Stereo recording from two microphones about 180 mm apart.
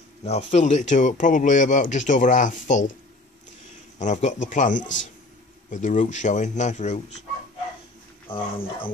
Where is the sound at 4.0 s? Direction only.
40° left (ahead or behind).